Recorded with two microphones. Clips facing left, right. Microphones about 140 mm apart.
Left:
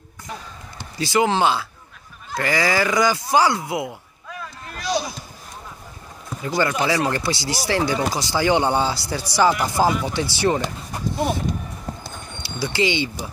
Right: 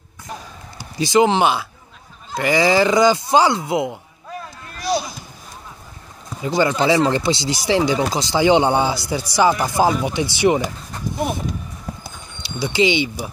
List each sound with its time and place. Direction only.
0.9 s speech: 20° right (ahead or behind)
6.4 s speech: 20° right (ahead or behind)
12.0 s a sound: 20° right (ahead or behind)